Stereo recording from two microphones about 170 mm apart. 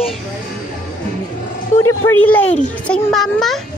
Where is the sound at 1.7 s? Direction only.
15° left (ahead or behind).